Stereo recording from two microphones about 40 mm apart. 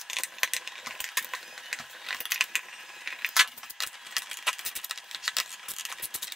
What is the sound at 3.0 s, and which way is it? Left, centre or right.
Keys jangling, centre.